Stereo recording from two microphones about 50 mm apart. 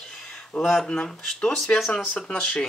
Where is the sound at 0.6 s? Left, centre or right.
Centre.